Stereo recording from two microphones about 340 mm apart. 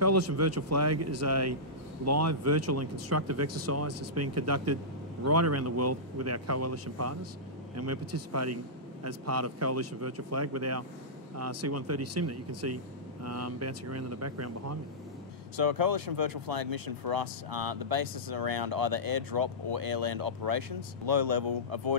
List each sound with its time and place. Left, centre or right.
0.0 s speech: right
15.5 s speech: right